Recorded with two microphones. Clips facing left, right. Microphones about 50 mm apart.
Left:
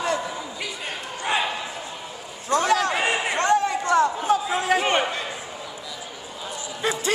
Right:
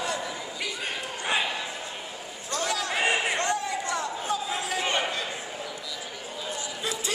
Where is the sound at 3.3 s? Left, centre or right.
Left.